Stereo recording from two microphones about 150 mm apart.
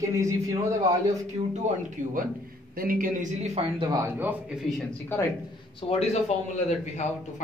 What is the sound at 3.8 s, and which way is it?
Speech, 20° right (ahead or behind).